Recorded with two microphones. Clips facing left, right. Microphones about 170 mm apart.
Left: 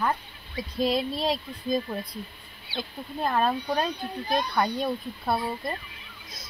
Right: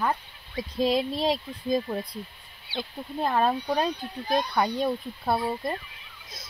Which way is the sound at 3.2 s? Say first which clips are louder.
Right 1 dB; 15° right (ahead or behind).